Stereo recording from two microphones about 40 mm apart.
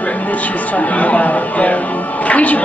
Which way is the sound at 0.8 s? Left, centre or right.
Left.